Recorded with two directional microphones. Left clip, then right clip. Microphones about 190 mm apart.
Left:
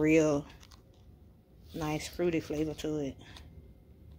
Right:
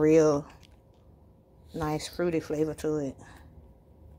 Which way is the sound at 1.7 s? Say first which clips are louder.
Right 4 dB; 20° right (ahead or behind).